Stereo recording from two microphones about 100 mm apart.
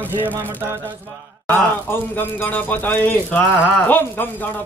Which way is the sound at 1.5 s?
20° left (ahead or behind).